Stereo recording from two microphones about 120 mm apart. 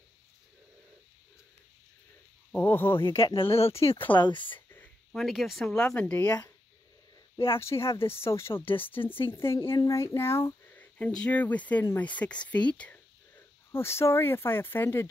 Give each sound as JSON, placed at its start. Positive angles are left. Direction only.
{"t": 2.5, "sound": "speech", "side_deg": 15}
{"t": 3.3, "sound": "speech", "side_deg": 50}
{"t": 4.6, "sound": "a sound", "side_deg": 15}
{"t": 5.1, "sound": "speech", "side_deg": 0}
{"t": 6.1, "sound": "speech", "side_deg": 30}
{"t": 7.5, "sound": "speech", "side_deg": 20}
{"t": 13.7, "sound": "speech", "side_deg": 20}